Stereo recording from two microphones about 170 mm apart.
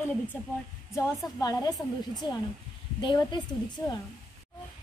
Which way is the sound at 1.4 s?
20° left (ahead or behind).